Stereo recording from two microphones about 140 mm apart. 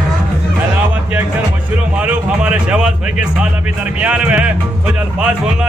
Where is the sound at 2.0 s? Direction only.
10° right (ahead or behind).